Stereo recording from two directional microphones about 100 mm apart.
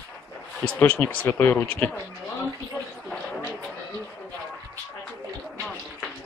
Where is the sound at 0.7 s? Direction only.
20° left (ahead or behind).